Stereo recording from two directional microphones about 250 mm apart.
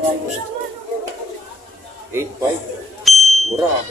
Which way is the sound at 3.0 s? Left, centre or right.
Centre.